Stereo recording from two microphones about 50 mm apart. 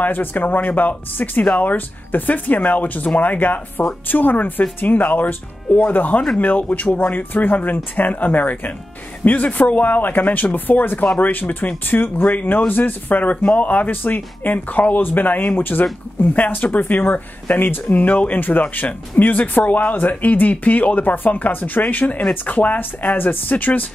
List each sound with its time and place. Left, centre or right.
0.0 s speech: left